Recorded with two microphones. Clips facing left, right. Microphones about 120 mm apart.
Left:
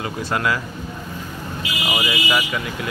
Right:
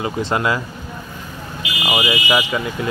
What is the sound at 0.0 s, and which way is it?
Speech, 25° right (ahead or behind).